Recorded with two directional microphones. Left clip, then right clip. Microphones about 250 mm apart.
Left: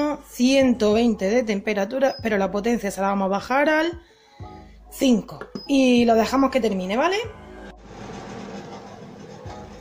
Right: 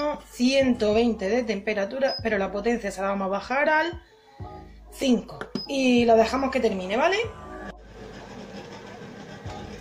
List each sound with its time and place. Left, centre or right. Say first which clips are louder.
0.0 s speech: left 3 dB; left
4.9 s speech: left 3 dB; left